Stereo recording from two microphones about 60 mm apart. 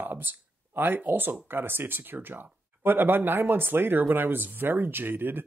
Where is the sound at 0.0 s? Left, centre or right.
Right.